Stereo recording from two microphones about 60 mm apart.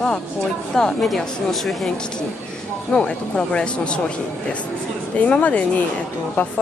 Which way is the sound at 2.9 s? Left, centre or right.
Centre.